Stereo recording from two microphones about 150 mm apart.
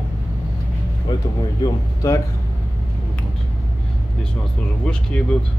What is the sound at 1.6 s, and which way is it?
Speech, 25° left (ahead or behind).